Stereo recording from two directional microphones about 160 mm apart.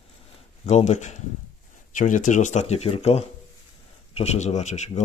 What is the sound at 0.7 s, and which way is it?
Speech, 45° left (ahead or behind).